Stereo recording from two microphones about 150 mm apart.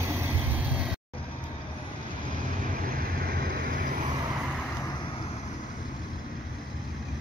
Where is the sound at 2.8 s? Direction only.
85° right; by 3.9 s 65° right (ahead or behind).